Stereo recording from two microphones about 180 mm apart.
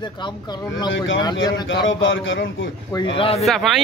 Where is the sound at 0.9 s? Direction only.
90° left.